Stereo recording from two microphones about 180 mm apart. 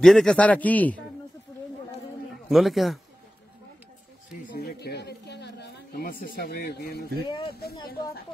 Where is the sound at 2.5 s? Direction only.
Centre (ahead or behind).